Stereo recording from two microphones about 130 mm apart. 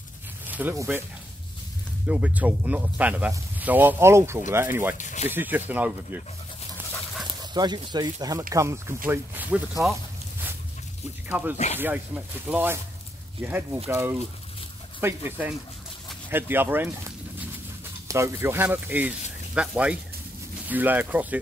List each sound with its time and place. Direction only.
0.5 s zipper: 15° right (ahead or behind)
2.0 s speech: 10° right (ahead or behind)
4.9 s speech: 65° left (ahead or behind)
5.3 s speech: 15° right (ahead or behind)
7.2 s speech: 35° right (ahead or behind); by 10.0 s 5° right (ahead or behind)
11.2 s speech: 15° right (ahead or behind)
11.5 s speech: 60° left (ahead or behind)
11.8 s speech: 10° right (ahead or behind)